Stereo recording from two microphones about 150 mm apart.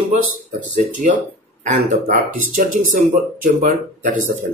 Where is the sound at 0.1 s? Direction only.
55° right (ahead or behind).